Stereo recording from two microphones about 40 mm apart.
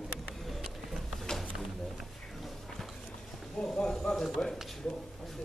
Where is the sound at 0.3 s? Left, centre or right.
Centre.